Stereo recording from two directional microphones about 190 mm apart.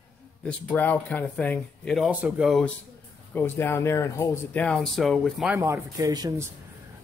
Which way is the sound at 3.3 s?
10° left (ahead or behind).